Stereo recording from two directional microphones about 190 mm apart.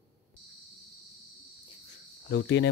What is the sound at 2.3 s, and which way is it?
Cricket, 75° left (ahead or behind).